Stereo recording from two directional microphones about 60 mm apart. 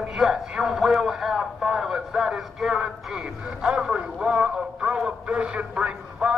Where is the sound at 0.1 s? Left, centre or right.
Centre.